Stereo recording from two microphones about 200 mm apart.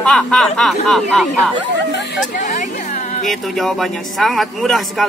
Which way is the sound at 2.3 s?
40° left (ahead or behind).